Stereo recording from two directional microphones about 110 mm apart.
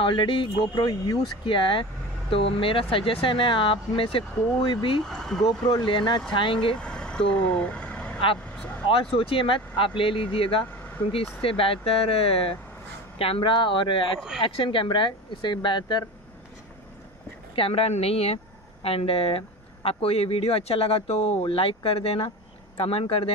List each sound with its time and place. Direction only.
0.0 s speech: 50° left (ahead or behind)
1.4 s speech: 50° left (ahead or behind)
5.1 s speech: 5° left (ahead or behind)
5.7 s speech: 45° left (ahead or behind)
6.8 s vehicle: 10° left (ahead or behind)
8.8 s speech: 55° left (ahead or behind)
17.6 s speech: 60° left (ahead or behind)